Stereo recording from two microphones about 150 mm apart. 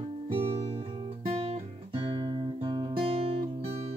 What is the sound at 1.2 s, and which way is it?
Music, 40° right (ahead or behind).